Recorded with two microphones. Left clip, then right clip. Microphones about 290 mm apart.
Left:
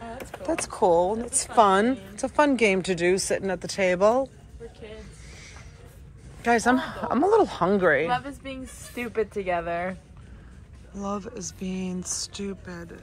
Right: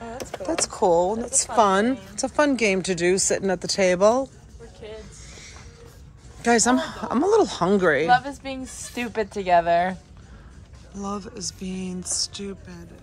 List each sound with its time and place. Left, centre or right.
0.7 s a woman's voice: centre
4.8 s a sound: centre
6.4 s a woman's voice: centre
8.9 s speech: right
11.0 s speech: centre